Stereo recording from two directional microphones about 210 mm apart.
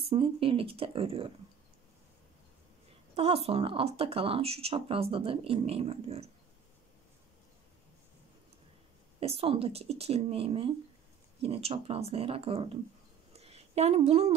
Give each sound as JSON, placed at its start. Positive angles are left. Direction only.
{"t": 0.0, "sound": "speech", "side_deg": -25}
{"t": 3.2, "sound": "speech", "side_deg": -30}
{"t": 9.2, "sound": "speech", "side_deg": -30}
{"t": 13.4, "sound": "a sound", "side_deg": -30}